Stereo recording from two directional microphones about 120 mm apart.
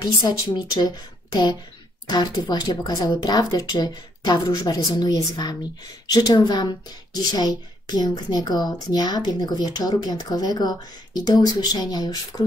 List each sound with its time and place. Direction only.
0.0 s a woman's voice: 40° left (ahead or behind)